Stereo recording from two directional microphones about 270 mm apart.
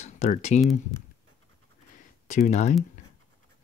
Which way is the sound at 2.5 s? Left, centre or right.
Left.